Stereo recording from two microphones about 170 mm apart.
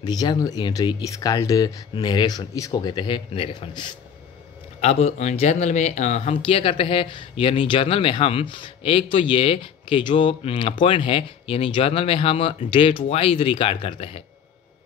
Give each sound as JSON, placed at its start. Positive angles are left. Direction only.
{"t": 0.0, "sound": "speech", "side_deg": 25}